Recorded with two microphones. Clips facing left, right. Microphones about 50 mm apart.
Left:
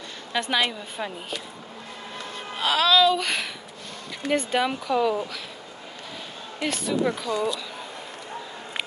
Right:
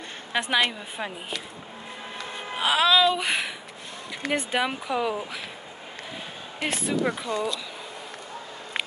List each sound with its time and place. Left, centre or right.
0.3 s a woman's voice: centre
2.3 s speech: centre
6.6 s speech: right